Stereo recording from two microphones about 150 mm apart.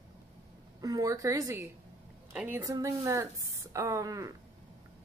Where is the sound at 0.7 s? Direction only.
25° right (ahead or behind).